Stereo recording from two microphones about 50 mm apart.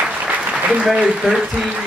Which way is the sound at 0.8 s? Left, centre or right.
Centre.